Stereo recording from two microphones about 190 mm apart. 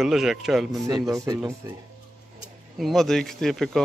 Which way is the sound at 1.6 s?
15° right (ahead or behind).